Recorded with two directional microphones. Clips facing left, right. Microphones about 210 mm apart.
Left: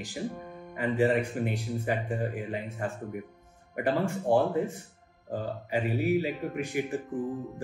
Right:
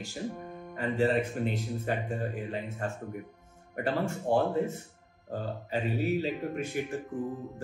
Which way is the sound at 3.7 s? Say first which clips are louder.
Left 2 dB; 15° left (ahead or behind).